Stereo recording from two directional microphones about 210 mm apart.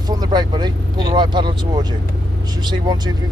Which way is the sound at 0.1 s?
20° right (ahead or behind).